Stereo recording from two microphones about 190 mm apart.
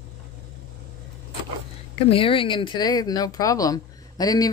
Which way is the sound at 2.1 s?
30° left (ahead or behind).